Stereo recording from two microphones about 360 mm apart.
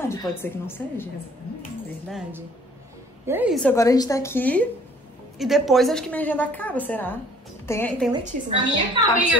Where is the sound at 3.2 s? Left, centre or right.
Centre.